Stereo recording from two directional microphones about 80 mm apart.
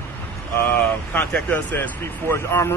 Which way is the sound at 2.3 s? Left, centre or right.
Left.